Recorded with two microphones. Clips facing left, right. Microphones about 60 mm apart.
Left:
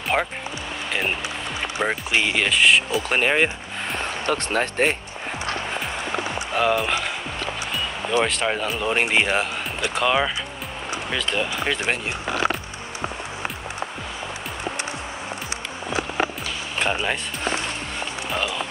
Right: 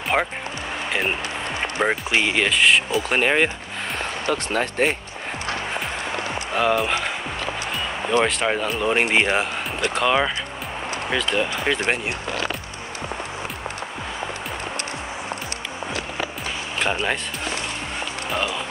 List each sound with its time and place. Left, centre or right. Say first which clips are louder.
0.1 s speech: right 1 dB; centre
1.6 s speech: right 2 dB; centre
2.2 s speech: even; centre
4.3 s speech: even; left
6.5 s speech: right 1 dB; centre
8.3 s speech: right 1 dB; centre